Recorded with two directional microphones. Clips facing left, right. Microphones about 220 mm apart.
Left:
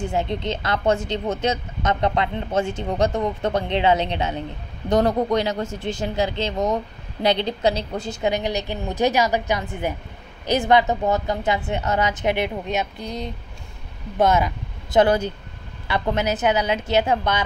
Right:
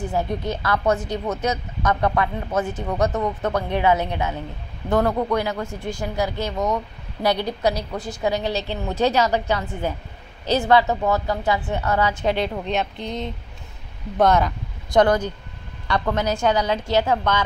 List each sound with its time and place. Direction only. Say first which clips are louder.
0.0 s a woman's voice: even; 25° left (ahead or behind)
14.2 s a woman's voice: right 1 dB; 5° left (ahead or behind); by 17.3 s 20° left (ahead or behind)